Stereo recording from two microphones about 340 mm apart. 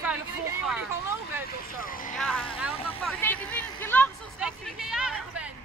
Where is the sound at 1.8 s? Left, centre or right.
Left.